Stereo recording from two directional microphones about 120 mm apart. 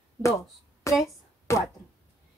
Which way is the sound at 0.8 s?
25° left (ahead or behind).